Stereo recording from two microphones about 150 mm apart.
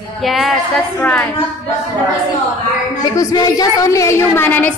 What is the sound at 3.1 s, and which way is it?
A woman's voice, 25° left (ahead or behind).